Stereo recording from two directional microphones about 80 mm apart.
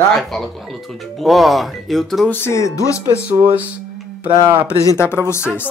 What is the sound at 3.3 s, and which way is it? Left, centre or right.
Speech, right.